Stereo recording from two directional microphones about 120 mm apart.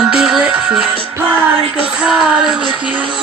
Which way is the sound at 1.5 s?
50° right (ahead or behind).